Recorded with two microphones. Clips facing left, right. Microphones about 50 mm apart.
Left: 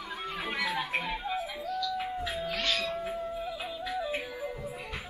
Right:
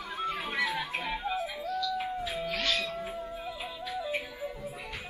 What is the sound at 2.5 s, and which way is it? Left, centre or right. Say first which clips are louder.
Music: even; left.